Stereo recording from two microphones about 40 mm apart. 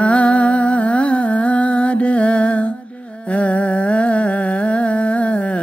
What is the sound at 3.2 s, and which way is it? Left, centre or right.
Humming, left.